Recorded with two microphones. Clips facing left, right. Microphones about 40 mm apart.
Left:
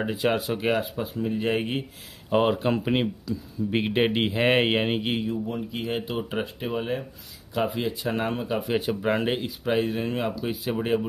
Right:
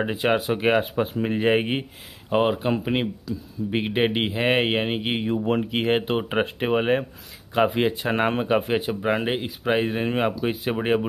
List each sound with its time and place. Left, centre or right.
0.0 s speech: right
1.0 s speech: right
1.4 s speech: right
2.3 s speech: centre
5.4 s speech: right
8.7 s speech: centre
9.7 s speech: right